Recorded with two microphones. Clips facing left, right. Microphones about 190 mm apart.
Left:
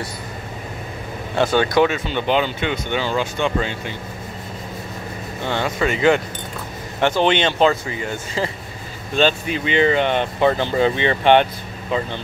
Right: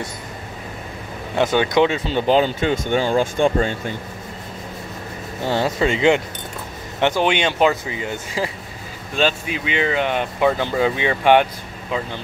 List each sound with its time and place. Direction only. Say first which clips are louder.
1.3 s speech: even; 15° right (ahead or behind)
2.0 s speech: right 3 dB; 35° right (ahead or behind)
5.5 s speech: right 2 dB; 30° right (ahead or behind)
9.1 s speech: left 2 dB; 5° right (ahead or behind)